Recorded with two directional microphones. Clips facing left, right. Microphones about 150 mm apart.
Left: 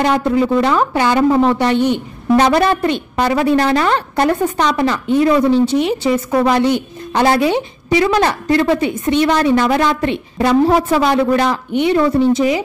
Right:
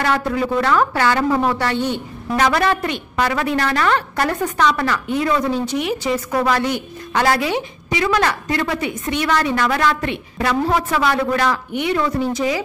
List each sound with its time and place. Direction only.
0.0 s a woman's voice: 20° left (ahead or behind)
2.3 s a woman's voice: 30° left (ahead or behind)